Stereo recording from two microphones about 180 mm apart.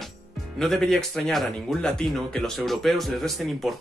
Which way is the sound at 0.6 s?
Centre (ahead or behind).